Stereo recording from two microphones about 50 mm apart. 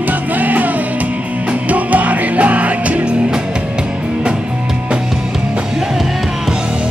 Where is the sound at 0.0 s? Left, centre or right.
Right.